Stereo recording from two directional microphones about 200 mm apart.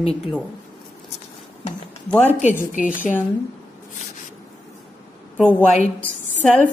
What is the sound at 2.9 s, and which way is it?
Speech, 10° left (ahead or behind).